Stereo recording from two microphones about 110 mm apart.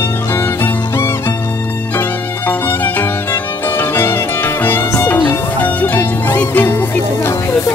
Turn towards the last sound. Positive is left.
turn(degrees=20)  # may be behind; listen again after turning